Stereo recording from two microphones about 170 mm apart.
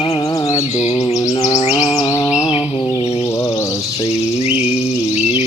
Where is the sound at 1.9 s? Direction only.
20° left (ahead or behind).